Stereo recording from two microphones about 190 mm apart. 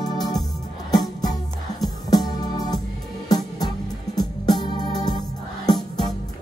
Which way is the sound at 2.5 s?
20° left (ahead or behind).